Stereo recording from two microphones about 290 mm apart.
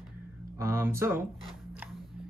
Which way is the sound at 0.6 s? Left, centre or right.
Centre.